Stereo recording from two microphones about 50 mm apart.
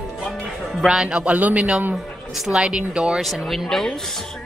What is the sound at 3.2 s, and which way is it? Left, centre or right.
Speech, centre.